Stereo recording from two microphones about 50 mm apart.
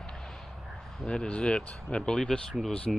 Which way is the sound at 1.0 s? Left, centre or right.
Centre.